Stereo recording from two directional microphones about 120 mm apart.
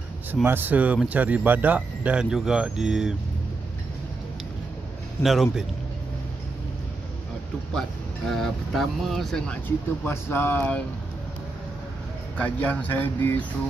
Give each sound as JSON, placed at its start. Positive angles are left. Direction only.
{"t": 0.3, "sound": "speech", "side_deg": -15}
{"t": 5.2, "sound": "speech", "side_deg": 0}
{"t": 8.3, "sound": "speech", "side_deg": 5}
{"t": 10.0, "sound": "speech", "side_deg": 20}
{"t": 12.4, "sound": "speech", "side_deg": 10}